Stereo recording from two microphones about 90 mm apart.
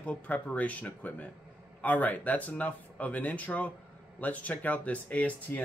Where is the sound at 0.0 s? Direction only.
15° left (ahead or behind).